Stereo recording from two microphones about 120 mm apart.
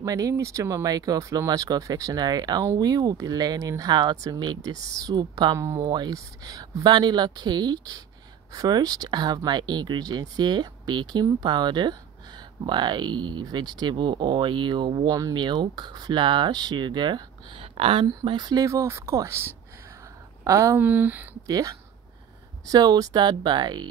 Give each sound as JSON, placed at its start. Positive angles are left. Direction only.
{"t": 0.0, "sound": "speech", "side_deg": -30}
{"t": 5.6, "sound": "speech", "side_deg": -25}
{"t": 5.9, "sound": "speech", "side_deg": -35}
{"t": 15.0, "sound": "speech", "side_deg": -30}
{"t": 18.2, "sound": "speech", "side_deg": -35}
{"t": 20.8, "sound": "speech", "side_deg": -15}
{"t": 21.5, "sound": "speech", "side_deg": -30}